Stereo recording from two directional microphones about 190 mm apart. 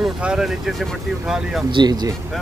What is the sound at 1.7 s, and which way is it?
Speech, 25° right (ahead or behind).